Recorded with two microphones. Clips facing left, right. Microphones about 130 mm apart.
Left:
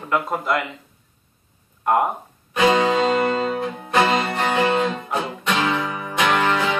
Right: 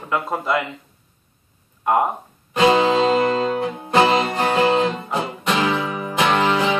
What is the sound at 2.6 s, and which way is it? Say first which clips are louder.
Music: right 2 dB; 20° right (ahead or behind).